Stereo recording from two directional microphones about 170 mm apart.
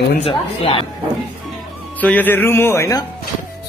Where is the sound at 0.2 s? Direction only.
35° left (ahead or behind).